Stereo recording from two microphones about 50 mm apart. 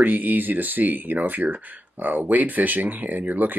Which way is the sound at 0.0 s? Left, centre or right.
Right.